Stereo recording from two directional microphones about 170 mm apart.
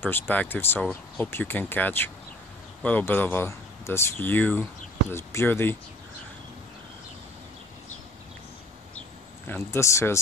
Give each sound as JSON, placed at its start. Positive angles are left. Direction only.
{"t": 0.0, "sound": "speech", "side_deg": 10}
{"t": 9.5, "sound": "speech", "side_deg": 15}